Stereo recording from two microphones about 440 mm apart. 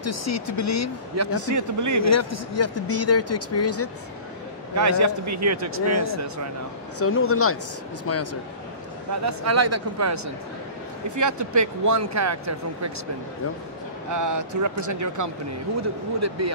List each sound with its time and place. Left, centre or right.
0.0 s speech: left
1.1 s speech: right
2.0 s speech: left
4.7 s speech: right
7.0 s speech: left
9.2 s speech: right
14.1 s speech: right